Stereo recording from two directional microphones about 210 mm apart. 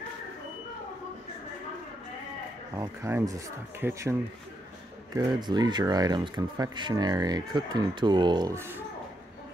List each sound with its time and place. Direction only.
2.7 s speech: 15° right (ahead or behind)